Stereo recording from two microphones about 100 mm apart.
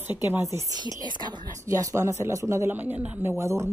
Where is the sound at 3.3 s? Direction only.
30° right (ahead or behind).